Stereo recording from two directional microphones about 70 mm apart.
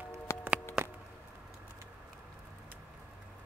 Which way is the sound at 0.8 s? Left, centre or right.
Centre.